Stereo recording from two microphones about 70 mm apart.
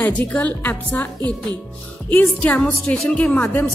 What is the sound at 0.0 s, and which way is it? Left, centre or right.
A woman's voice, centre.